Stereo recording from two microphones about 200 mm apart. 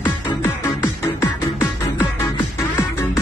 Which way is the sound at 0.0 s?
10° left (ahead or behind).